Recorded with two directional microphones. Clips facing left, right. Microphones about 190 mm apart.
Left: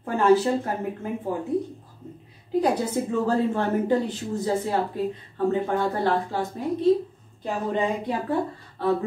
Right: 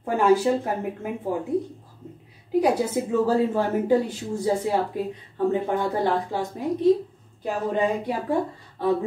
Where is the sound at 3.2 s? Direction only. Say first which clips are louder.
Right 2 dB; 10° right (ahead or behind).